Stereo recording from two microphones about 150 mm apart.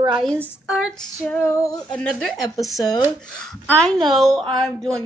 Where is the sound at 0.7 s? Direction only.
Centre (ahead or behind).